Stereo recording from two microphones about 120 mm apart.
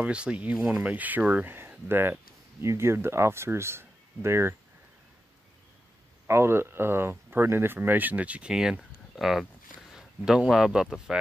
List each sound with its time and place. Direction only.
0.0 s speech: 10° right (ahead or behind)
6.2 s speech: 20° right (ahead or behind)